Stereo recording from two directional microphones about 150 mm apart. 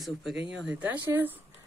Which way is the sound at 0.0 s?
5° right (ahead or behind).